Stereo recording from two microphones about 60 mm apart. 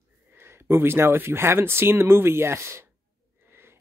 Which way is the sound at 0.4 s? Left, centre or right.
Right.